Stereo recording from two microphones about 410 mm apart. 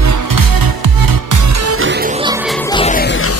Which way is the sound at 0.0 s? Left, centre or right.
Right.